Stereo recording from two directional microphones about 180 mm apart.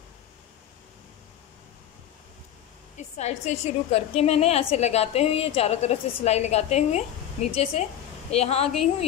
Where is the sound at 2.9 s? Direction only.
40° left (ahead or behind).